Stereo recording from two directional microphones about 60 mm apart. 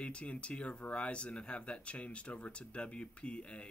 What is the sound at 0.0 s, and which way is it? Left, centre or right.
Speech, centre.